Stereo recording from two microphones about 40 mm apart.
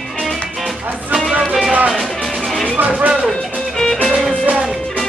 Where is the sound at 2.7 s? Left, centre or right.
Right.